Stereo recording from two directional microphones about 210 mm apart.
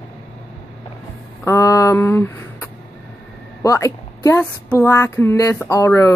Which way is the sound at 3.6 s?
15° left (ahead or behind).